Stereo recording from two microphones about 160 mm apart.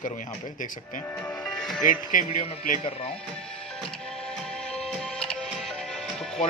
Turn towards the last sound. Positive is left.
turn(degrees=0)  # may be behind; listen again after turning